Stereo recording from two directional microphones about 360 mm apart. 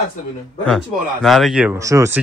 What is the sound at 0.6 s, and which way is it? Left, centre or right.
Speech, centre.